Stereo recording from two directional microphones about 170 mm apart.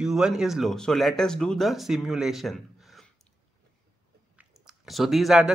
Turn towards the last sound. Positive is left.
turn(degrees=-5)  # may be behind; listen again after turning